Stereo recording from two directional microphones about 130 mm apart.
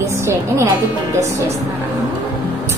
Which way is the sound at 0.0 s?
25° right (ahead or behind).